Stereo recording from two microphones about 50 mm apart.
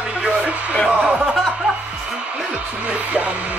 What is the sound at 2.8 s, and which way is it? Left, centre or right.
Music, right.